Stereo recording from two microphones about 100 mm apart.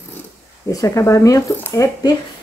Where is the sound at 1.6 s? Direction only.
30° left (ahead or behind).